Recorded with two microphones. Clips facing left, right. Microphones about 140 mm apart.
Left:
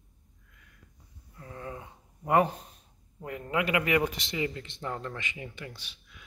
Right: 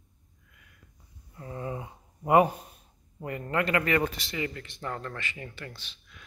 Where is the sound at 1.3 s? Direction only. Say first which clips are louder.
Right 5 dB; 20° right (ahead or behind).